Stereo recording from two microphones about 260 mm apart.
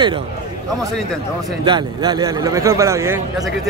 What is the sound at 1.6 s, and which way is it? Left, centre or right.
Speech, centre.